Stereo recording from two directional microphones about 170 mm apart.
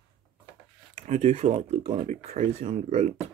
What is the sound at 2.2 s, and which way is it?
Speech, 45° right (ahead or behind).